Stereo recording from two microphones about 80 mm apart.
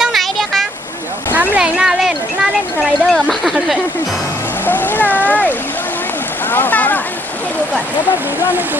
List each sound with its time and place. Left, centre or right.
0.0 s vehicle: centre
1.3 s a sound: right
1.8 s a sound: centre
2.8 s speech: centre
4.6 s speech: left
6.5 s speech: left